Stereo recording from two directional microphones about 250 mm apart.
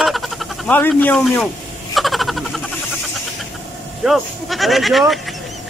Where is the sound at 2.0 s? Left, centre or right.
Centre.